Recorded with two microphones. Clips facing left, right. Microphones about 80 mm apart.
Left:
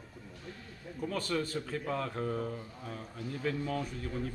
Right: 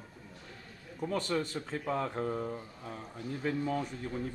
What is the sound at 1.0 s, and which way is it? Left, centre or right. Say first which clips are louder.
Speech: right 1 dB; right.